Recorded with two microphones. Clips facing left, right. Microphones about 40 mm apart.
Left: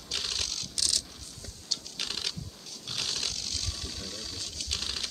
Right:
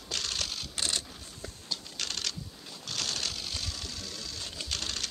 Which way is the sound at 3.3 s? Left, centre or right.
Centre.